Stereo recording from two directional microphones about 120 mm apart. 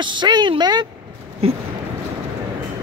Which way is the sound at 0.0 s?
40° right (ahead or behind).